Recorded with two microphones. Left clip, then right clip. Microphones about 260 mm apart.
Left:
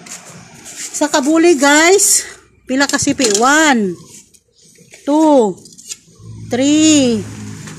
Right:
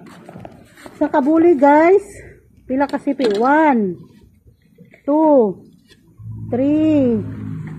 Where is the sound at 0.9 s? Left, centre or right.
Left.